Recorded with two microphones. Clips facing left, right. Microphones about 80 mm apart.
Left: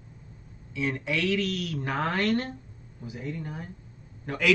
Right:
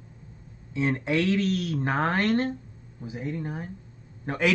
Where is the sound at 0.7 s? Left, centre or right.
Right.